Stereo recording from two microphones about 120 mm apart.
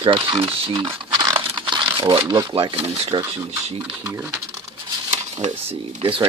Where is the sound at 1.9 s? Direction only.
40° right (ahead or behind).